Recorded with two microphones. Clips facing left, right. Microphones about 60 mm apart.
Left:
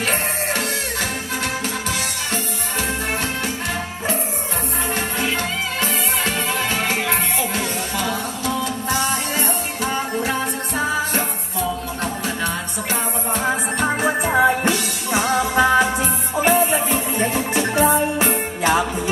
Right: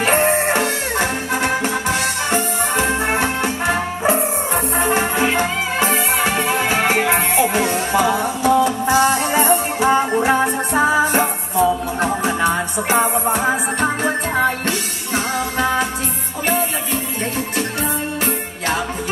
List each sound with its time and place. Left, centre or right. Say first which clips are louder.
0.0 s music: right 7 dB; right; by 13.6 s centre
13.7 s music: right 1 dB; centre
15.1 s music: left 3 dB; centre